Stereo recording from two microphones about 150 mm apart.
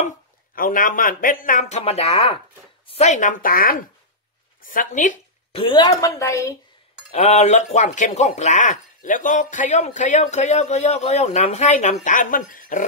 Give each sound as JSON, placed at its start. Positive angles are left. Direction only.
{"t": 0.6, "sound": "a man's voice", "side_deg": 65}
{"t": 4.6, "sound": "a man's voice", "side_deg": 60}
{"t": 5.5, "sound": "a woman's voice", "side_deg": 35}
{"t": 5.9, "sound": "a woman's voice", "side_deg": 25}
{"t": 7.1, "sound": "speech", "side_deg": 50}